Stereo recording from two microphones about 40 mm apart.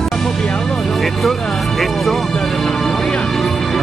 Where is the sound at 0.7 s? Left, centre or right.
Centre.